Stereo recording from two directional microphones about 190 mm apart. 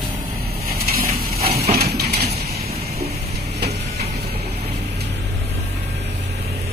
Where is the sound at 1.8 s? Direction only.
55° right (ahead or behind).